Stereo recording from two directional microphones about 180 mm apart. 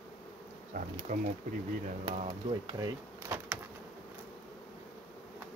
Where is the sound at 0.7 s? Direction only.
45° right (ahead or behind).